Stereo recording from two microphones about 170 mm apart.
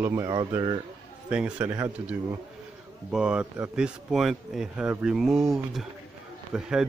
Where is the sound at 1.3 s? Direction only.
5° right (ahead or behind).